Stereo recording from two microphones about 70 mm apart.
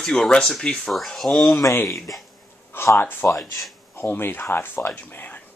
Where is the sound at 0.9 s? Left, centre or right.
Centre.